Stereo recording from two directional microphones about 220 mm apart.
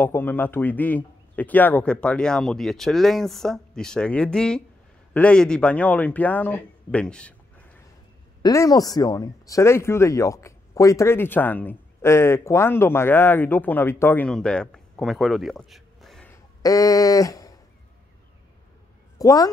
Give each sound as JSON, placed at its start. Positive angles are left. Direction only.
{"t": 0.0, "sound": "a man's voice", "side_deg": 10}
{"t": 8.4, "sound": "speech", "side_deg": 15}
{"t": 16.6, "sound": "speech", "side_deg": 15}
{"t": 19.1, "sound": "a woman's voice", "side_deg": 15}